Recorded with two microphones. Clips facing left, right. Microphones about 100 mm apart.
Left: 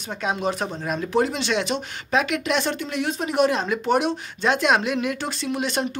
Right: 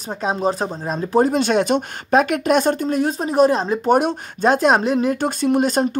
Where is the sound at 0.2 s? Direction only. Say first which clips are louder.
Right 4 dB; 35° right (ahead or behind).